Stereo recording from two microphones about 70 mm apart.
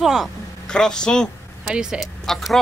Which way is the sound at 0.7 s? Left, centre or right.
Centre.